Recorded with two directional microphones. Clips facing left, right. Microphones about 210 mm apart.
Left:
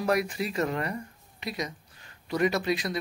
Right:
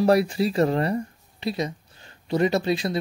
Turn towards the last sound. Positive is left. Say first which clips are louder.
# right 5 dB
turn(degrees=-30)  # may be behind; listen again after turning